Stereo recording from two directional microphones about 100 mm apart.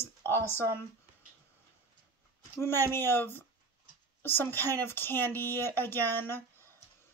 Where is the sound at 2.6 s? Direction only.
25° left (ahead or behind).